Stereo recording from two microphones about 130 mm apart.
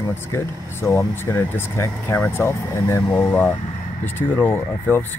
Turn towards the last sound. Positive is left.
turn(degrees=15)  # may be behind; listen again after turning